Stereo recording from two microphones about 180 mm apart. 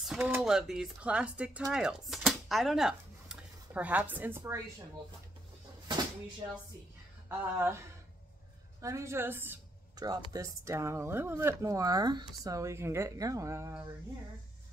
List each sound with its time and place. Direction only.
0.0 s speech: 5° right (ahead or behind)
7.2 s speech: 15° right (ahead or behind)
8.8 s speech: 15° right (ahead or behind)